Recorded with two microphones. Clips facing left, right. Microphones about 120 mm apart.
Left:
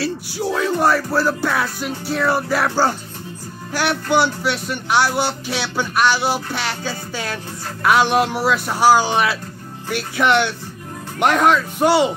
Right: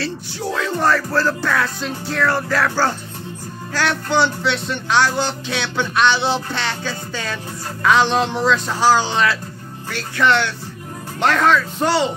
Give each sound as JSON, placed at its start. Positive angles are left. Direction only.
{"t": 0.0, "sound": "speech", "side_deg": 10}